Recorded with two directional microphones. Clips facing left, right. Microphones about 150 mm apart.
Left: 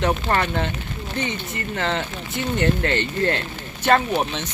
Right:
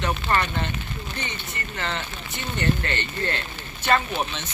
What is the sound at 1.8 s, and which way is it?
Speech, 90° left.